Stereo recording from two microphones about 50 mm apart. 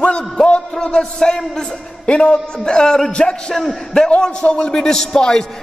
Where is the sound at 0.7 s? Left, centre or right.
Centre.